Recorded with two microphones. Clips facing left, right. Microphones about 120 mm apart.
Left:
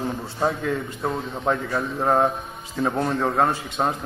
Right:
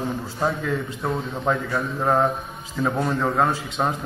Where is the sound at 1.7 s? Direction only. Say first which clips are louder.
Even; 25° left (ahead or behind).